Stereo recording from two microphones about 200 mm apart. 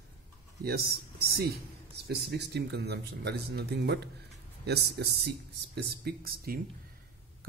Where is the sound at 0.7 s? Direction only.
50° right (ahead or behind).